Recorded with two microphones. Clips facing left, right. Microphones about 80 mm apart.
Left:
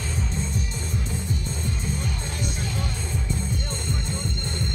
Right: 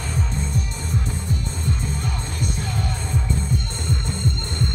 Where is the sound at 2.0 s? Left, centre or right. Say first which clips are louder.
Right 3 dB; right.